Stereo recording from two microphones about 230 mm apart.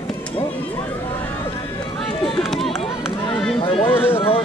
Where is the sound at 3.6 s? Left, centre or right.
Left.